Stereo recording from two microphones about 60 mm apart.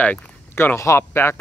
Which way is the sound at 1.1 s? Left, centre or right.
Left.